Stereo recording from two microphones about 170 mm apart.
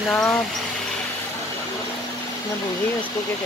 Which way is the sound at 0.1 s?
5° left (ahead or behind).